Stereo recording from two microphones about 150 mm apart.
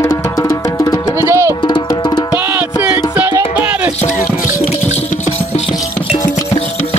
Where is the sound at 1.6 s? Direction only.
30° left (ahead or behind).